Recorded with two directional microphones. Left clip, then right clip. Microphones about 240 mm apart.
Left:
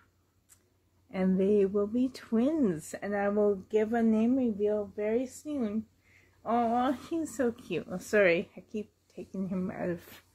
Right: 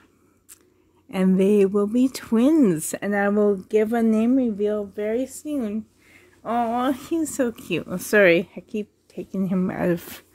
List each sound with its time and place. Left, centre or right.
1.1 s speech: right